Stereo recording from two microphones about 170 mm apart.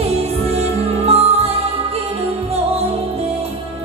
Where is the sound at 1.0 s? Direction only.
35° right (ahead or behind).